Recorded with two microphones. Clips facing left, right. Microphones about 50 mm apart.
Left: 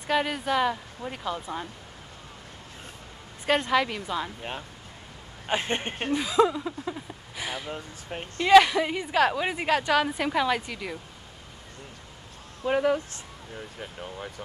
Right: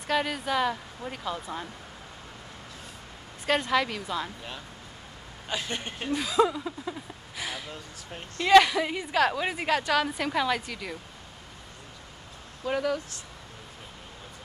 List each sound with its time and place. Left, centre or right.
0.1 s a woman's voice: centre
3.4 s a woman's voice: centre
4.4 s speech: left
6.1 s speech: centre
6.8 s a sound: centre
7.7 s speech: left
8.5 s a woman's voice: centre
12.6 s speech: left